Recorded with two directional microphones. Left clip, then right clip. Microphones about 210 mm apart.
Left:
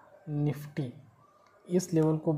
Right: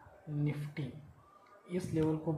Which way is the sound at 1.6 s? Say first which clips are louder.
Left 7 dB; 15° left (ahead or behind).